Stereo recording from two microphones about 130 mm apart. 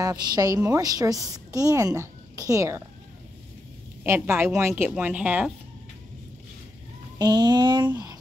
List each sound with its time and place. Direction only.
0.0 s a woman's voice: 30° right (ahead or behind)
4.0 s a woman's voice: 20° right (ahead or behind)
7.2 s a sound: 30° right (ahead or behind)